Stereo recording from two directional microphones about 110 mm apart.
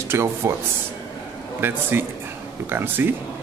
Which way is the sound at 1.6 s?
20° right (ahead or behind).